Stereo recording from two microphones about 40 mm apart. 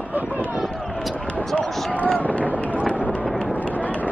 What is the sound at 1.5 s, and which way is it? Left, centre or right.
Run, left.